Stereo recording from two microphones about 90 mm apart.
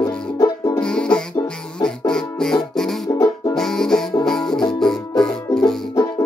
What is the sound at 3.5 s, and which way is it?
Music, 5° left (ahead or behind).